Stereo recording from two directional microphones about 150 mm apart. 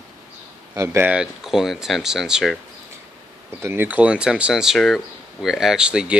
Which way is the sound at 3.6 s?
15° right (ahead or behind).